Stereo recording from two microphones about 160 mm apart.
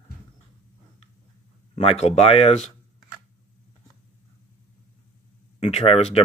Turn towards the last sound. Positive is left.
turn(degrees=40)  # may be behind; listen again after turning